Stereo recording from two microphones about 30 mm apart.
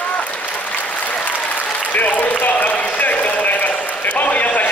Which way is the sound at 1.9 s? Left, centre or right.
Left.